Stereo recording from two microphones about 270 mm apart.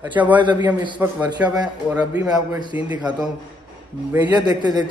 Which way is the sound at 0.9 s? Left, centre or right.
Centre.